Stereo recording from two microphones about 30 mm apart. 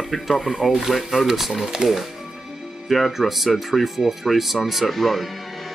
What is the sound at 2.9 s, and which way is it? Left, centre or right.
Speech, centre.